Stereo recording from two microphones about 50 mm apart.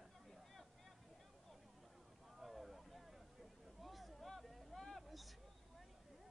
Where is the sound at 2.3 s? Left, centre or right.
Centre.